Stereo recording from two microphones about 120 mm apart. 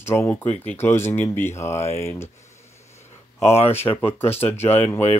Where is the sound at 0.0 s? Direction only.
20° left (ahead or behind).